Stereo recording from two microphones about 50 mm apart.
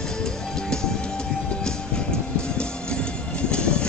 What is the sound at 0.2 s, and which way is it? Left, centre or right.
Music, centre.